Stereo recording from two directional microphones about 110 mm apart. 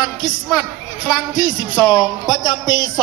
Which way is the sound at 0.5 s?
5° right (ahead or behind).